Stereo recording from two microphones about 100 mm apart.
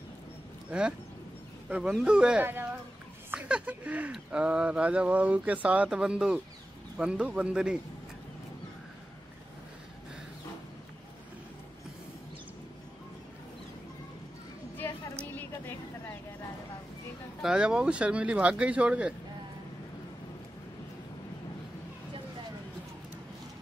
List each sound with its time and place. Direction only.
0.7 s speech: 10° right (ahead or behind)
2.4 s speech: 20° right (ahead or behind)
3.3 s speech: 10° right (ahead or behind)
15.2 s a sound: 20° left (ahead or behind)
17.4 s speech: 5° right (ahead or behind)